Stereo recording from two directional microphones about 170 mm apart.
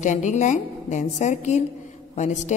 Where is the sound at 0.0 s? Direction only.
45° left (ahead or behind).